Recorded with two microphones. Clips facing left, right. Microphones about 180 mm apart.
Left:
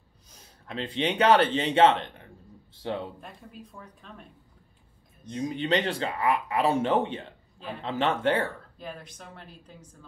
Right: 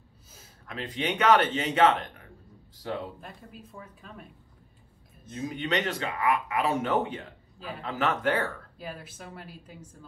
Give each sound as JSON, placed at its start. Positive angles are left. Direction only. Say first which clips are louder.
{"t": 0.7, "sound": "speech", "louder": "left 3 dB", "side_deg": 30}
{"t": 3.2, "sound": "speech", "louder": "left 1 dB", "side_deg": 0}
{"t": 5.5, "sound": "speech", "louder": "left 3 dB", "side_deg": 30}
{"t": 8.7, "sound": "speech", "louder": "even", "side_deg": -5}